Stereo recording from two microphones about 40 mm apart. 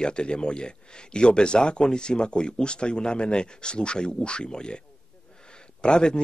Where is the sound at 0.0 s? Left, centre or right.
Left.